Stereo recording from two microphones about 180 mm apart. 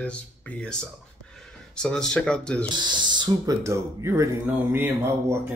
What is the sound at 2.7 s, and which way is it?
Speech, 25° right (ahead or behind).